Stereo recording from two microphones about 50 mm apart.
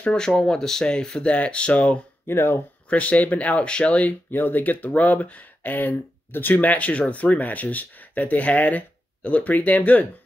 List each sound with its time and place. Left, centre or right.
0.0 s speech: centre
2.2 s speech: left
2.9 s speech: left
4.3 s speech: left